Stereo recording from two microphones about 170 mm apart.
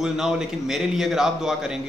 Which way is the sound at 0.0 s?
5° right (ahead or behind).